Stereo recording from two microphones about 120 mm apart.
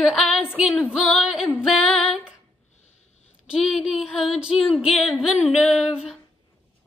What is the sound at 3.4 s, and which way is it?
Female singing, 5° right (ahead or behind).